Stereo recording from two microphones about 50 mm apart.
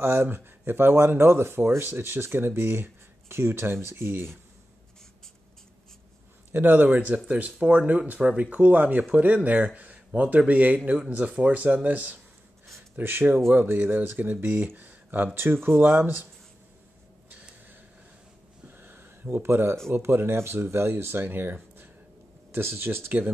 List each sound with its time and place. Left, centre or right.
0.0 s speech: right
6.5 s speech: right
6.9 s speech: right
12.9 s speech: right
14.1 s speech: right
14.8 s a sound: right
15.3 s speech: right
15.7 s speech: right
18.7 s a sound: right
19.4 s speech: right
22.5 s speech: right